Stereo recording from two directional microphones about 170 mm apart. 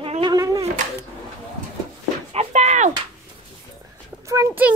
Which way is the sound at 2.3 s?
40° right (ahead or behind).